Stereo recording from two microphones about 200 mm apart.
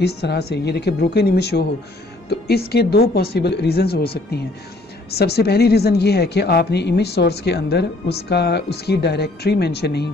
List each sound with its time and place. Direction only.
0.0 s speech: 55° left (ahead or behind)